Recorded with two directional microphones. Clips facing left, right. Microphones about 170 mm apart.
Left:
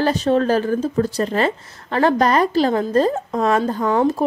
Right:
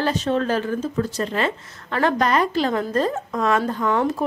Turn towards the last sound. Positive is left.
turn(degrees=30)  # may be behind; listen again after turning